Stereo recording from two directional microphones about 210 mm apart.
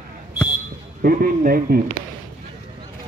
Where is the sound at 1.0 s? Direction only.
45° right (ahead or behind).